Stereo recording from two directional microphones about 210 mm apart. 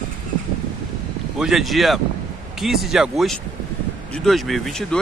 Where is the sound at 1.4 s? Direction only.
Centre (ahead or behind).